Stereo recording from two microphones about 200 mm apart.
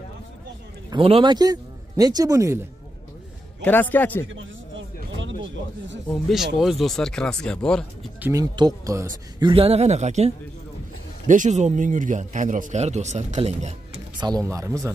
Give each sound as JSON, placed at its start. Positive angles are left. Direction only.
{"t": 0.8, "sound": "a man's voice", "side_deg": -25}
{"t": 3.6, "sound": "a man's voice", "side_deg": 10}
{"t": 4.3, "sound": "a sound", "side_deg": -70}
{"t": 6.0, "sound": "speech", "side_deg": 5}
{"t": 8.2, "sound": "speech", "side_deg": -15}
{"t": 9.4, "sound": "speech", "side_deg": -25}
{"t": 14.2, "sound": "speech", "side_deg": -15}